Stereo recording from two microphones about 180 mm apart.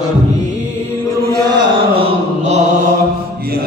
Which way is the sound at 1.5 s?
35° right (ahead or behind).